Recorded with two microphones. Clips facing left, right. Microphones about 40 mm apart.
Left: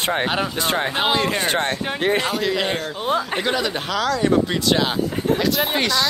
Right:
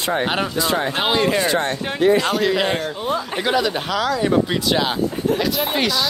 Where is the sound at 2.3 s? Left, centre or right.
Centre.